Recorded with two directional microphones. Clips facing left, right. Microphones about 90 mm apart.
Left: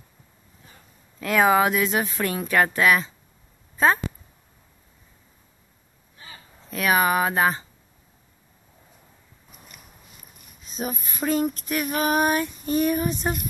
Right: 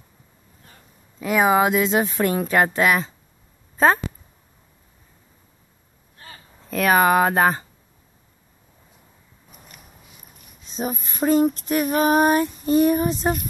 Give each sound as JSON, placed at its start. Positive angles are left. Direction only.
{"t": 1.2, "sound": "speech", "side_deg": -10}
{"t": 1.6, "sound": "speech", "side_deg": -25}
{"t": 6.2, "sound": "speech", "side_deg": -45}
{"t": 10.7, "sound": "female singing", "side_deg": -30}